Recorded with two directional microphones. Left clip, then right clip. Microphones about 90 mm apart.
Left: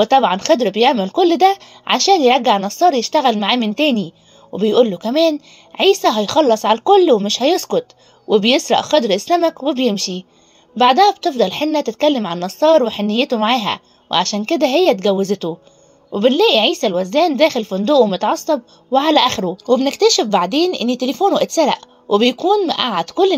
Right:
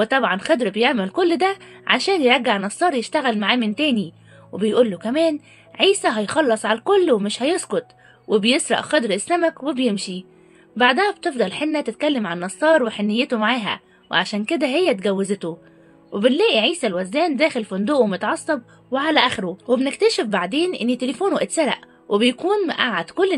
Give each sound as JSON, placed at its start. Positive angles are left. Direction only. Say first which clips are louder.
{"t": 0.0, "sound": "speech", "louder": "left 6 dB", "side_deg": 40}
{"t": 5.0, "sound": "a woman's voice", "louder": "left 5 dB", "side_deg": 50}
{"t": 14.1, "sound": "speech", "louder": "left 4 dB", "side_deg": 35}
{"t": 18.9, "sound": "a woman's voice", "louder": "left 5 dB", "side_deg": 50}
{"t": 22.4, "sound": "speech", "louder": "left 5 dB", "side_deg": 20}
{"t": 22.7, "sound": "speech", "louder": "left 3 dB", "side_deg": 40}